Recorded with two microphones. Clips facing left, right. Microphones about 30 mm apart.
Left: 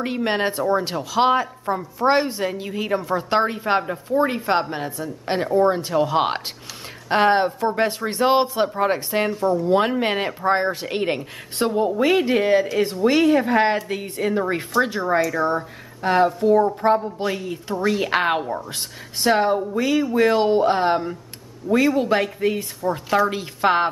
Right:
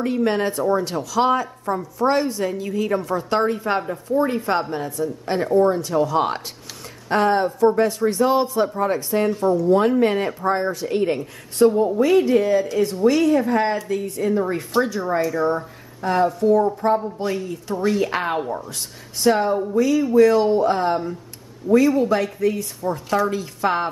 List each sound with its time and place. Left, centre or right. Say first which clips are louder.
0.0 s a woman's voice: right 2 dB; left
22.8 s a woman's voice: left 1 dB; left
23.3 s speech: left 2 dB; left